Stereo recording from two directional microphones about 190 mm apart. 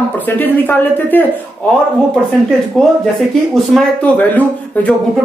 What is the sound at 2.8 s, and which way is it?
Speech, centre (ahead or behind).